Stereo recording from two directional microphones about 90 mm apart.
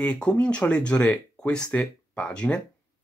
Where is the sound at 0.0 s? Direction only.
10° left (ahead or behind).